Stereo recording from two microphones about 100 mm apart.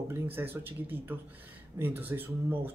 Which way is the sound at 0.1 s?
20° right (ahead or behind).